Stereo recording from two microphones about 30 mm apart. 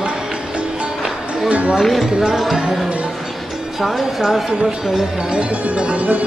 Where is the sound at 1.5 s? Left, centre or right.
Right.